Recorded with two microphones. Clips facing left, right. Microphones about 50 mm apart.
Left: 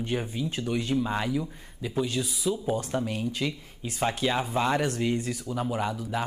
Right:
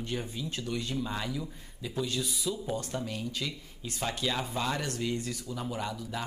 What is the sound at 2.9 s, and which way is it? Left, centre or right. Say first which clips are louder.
Speech: left 6 dB; left.